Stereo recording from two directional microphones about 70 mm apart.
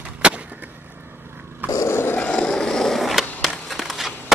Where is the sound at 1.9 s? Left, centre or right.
Left.